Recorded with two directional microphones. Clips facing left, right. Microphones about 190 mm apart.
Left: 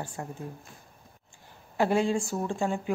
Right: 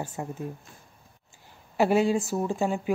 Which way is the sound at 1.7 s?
15° right (ahead or behind).